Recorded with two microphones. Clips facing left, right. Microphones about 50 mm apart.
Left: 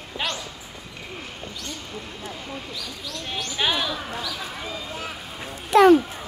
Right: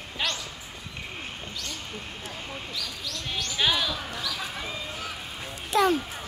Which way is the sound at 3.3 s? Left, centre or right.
Centre.